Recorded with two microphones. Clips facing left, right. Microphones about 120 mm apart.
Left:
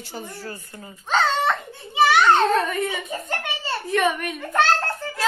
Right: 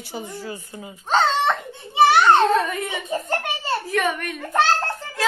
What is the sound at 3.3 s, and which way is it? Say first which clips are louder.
Speech: right 3 dB; 40° right (ahead or behind).